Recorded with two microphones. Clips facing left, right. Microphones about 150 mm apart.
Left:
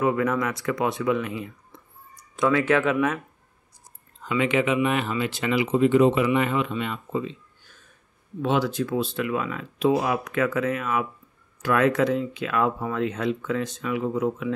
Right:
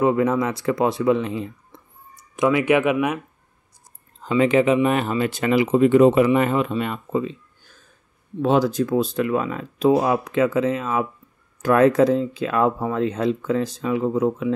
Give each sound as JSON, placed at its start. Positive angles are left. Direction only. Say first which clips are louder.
{"t": 0.0, "sound": "speech", "louder": "right 4 dB", "side_deg": -25}
{"t": 2.3, "sound": "speech", "louder": "right 3 dB", "side_deg": -15}
{"t": 4.2, "sound": "speech", "louder": "right 6 dB", "side_deg": -35}
{"t": 8.4, "sound": "speech", "louder": "right 5 dB", "side_deg": -40}